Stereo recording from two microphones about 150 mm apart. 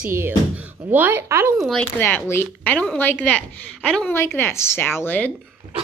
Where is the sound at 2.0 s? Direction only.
15° left (ahead or behind).